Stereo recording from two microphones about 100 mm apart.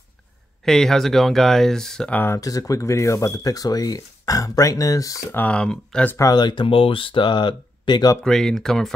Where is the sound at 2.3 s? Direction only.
35° left (ahead or behind).